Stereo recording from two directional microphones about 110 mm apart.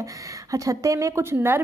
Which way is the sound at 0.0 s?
30° right (ahead or behind).